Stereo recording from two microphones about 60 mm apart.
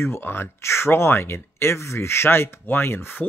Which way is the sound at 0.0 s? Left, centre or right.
Left.